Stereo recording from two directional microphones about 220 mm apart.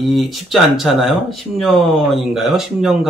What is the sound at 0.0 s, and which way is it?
Speech, centre (ahead or behind).